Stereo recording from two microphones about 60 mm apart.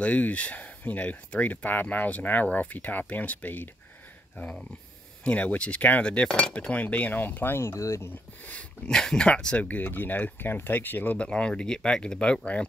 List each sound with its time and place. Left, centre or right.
0.0 s speech: left
5.2 s speech: left
7.7 s speech: left
8.5 s speech: left
8.9 s speech: centre
9.7 s speech: left
11.1 s speech: centre